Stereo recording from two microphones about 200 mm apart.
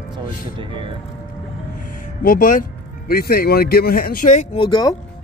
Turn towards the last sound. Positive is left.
turn(degrees=20)  # may be behind; listen again after turning